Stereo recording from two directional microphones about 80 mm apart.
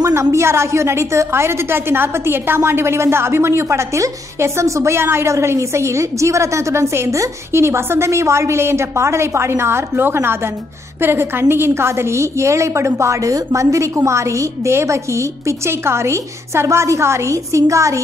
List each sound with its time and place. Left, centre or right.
0.0 s a woman's voice: right